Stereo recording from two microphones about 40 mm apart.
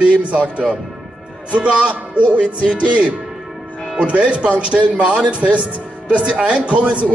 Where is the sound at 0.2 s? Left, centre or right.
Right.